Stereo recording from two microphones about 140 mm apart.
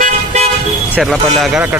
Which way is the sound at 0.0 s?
55° right (ahead or behind).